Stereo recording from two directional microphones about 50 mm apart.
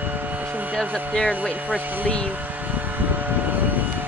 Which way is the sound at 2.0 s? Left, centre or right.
Left.